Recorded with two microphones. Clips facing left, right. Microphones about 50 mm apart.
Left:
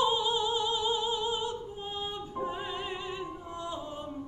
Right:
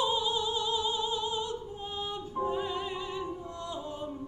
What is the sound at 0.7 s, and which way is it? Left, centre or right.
Music, left.